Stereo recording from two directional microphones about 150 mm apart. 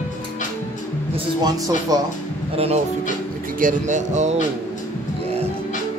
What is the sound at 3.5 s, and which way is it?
Speech, 60° right (ahead or behind).